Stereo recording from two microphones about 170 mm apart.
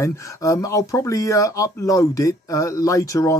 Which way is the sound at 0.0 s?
20° left (ahead or behind).